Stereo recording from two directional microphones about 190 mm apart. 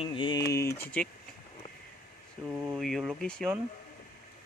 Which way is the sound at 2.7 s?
Centre (ahead or behind).